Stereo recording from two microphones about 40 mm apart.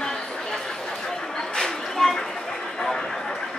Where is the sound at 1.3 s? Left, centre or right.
Centre.